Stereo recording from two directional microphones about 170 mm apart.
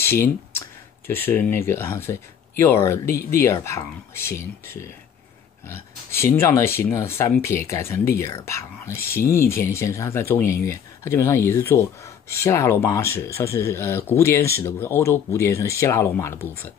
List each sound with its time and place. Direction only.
0.0 s speech: 15° left (ahead or behind)
3.1 s speech: 60° left (ahead or behind)
3.4 s speech: 15° left (ahead or behind)